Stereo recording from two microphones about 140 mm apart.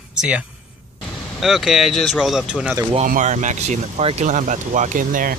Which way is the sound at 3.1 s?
60° right (ahead or behind).